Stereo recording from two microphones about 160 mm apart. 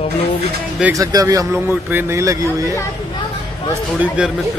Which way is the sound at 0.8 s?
20° right (ahead or behind).